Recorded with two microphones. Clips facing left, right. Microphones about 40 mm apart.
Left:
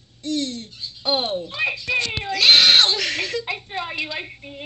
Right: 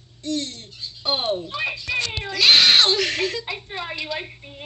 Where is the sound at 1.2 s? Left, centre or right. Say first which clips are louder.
Left 1 dB; centre.